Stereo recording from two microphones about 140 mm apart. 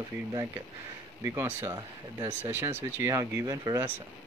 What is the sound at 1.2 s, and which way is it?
Speech, 20° right (ahead or behind).